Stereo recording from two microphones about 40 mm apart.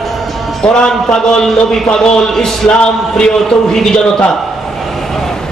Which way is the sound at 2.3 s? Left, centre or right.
Centre.